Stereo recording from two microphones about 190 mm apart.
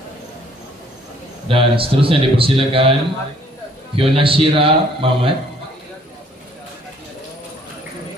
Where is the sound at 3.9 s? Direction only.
30° right (ahead or behind).